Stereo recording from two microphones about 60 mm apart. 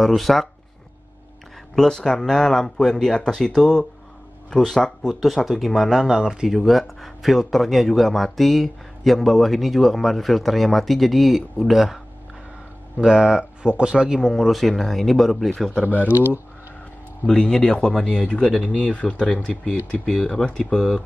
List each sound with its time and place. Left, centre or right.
0.0 s speech: centre
1.8 s speech: centre
13.0 s speech: centre
15.8 s speech: left
17.3 s speech: centre